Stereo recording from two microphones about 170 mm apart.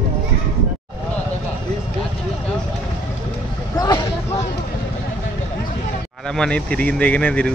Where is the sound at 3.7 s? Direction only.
25° left (ahead or behind).